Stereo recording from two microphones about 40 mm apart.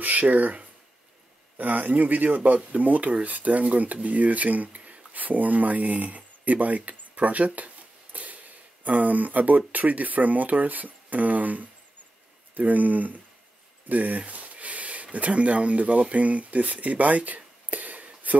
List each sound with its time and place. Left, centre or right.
0.0 s speech: right
13.8 s a sound: right
15.1 s speech: right